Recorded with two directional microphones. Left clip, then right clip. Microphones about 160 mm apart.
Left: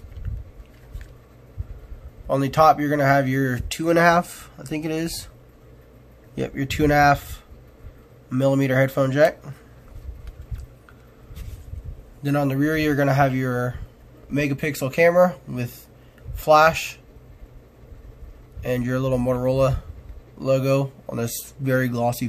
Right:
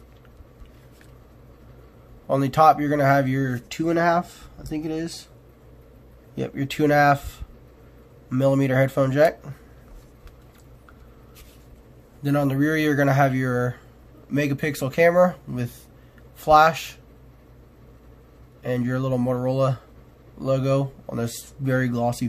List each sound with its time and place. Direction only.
2.2 s speech: 5° left (ahead or behind); by 5.3 s 20° left (ahead or behind)
6.3 s speech: 5° left (ahead or behind)
12.2 s speech: centre (ahead or behind)
18.6 s speech: 5° left (ahead or behind)